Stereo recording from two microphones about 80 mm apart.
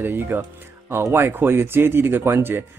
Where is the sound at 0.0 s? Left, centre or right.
Right.